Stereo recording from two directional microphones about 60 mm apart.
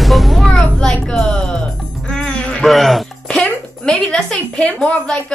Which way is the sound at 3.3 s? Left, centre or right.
Centre.